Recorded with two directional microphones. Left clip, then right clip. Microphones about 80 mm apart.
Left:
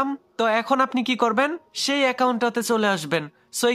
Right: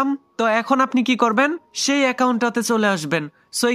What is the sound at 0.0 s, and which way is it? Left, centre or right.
Speech, right.